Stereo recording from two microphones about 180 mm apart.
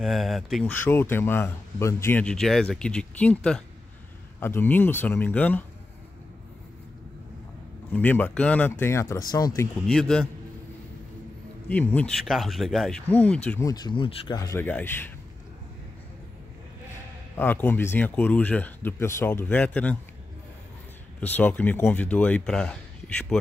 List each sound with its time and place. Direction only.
0.0 s speech: centre (ahead or behind)
7.9 s speech: 10° left (ahead or behind)
9.8 s speech: 5° left (ahead or behind)
11.7 s speech: 10° left (ahead or behind)
13.7 s speech: 25° left (ahead or behind)
17.4 s speech: 10° left (ahead or behind)
21.2 s speech: 10° left (ahead or behind)